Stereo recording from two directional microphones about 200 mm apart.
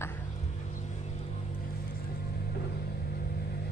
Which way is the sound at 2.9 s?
50° left (ahead or behind).